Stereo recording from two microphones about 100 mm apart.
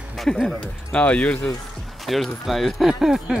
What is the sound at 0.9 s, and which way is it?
Speech, 10° left (ahead or behind).